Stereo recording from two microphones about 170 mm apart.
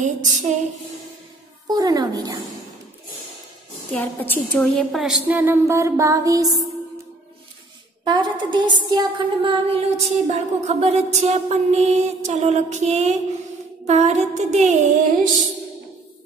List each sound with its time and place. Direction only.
0.0 s female singing: 45° right (ahead or behind)
1.7 s a woman's voice: 25° right (ahead or behind)
3.9 s a woman's voice: 10° left (ahead or behind); by 6.6 s 20° right (ahead or behind)
8.0 s a woman's voice: 25° right (ahead or behind); by 14.9 s 40° right (ahead or behind)